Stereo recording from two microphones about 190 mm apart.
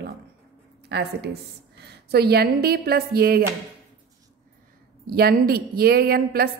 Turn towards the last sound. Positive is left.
turn(degrees=-55)  # may be behind; listen again after turning